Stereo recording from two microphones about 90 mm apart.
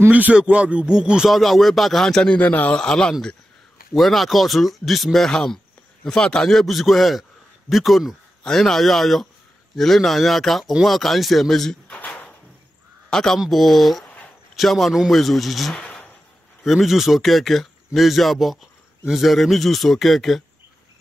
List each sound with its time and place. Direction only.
0.1 s speech: 15° right (ahead or behind); by 2.3 s 5° left (ahead or behind)
2.3 s speech: 20° left (ahead or behind)
11.9 s a sound: 15° left (ahead or behind)
13.1 s speech: 5° left (ahead or behind)
14.0 s a sound: 15° left (ahead or behind)
14.5 s a man's voice: centre (ahead or behind)
16.6 s speech: 5° right (ahead or behind)